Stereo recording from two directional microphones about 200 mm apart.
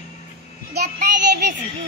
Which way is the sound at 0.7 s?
50° right (ahead or behind).